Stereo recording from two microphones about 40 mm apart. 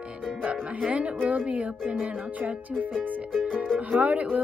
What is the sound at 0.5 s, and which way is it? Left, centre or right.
Speech, right.